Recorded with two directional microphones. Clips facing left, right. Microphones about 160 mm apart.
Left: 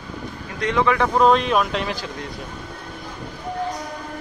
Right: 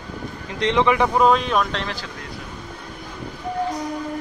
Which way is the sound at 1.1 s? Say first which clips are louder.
Left 1 dB; centre (ahead or behind).